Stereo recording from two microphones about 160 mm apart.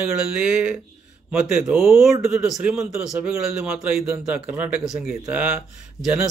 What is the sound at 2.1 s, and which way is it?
Speech, 15° right (ahead or behind).